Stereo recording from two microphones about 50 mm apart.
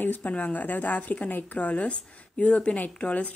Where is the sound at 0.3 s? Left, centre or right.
Left.